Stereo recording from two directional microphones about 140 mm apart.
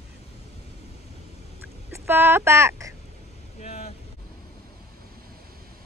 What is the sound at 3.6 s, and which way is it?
Boat, 55° left (ahead or behind).